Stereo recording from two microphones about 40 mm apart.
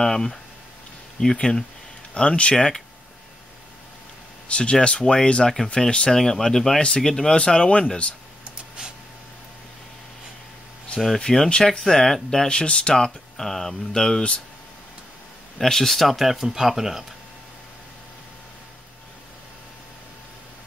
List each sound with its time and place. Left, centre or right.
0.0 s speech: centre
2.1 s speech: left
2.5 s speech: centre
4.5 s speech: left
6.1 s speech: centre
11.1 s speech: centre
11.9 s speech: centre
12.4 s speech: left
12.9 s speech: centre
15.5 s speech: centre